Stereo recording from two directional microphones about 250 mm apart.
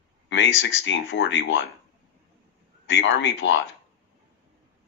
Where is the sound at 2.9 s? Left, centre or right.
Left.